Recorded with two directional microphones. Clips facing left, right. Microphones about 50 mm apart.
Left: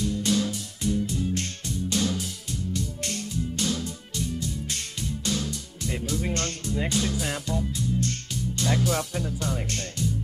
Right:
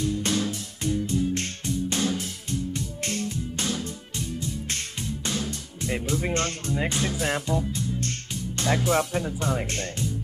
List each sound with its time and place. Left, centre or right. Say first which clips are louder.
0.0 s music: left 1 dB; right
5.8 s speech: right 3 dB; right
8.6 s speech: right 3 dB; right